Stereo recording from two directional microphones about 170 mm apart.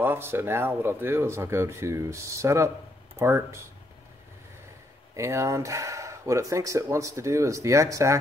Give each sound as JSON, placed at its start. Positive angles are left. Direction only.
{"t": 0.0, "sound": "speech", "side_deg": -15}
{"t": 5.1, "sound": "speech", "side_deg": -15}